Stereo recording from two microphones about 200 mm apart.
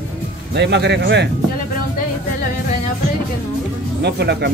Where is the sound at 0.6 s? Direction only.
60° right (ahead or behind).